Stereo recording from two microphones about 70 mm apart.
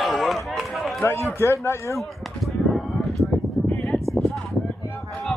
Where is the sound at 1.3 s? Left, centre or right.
Left.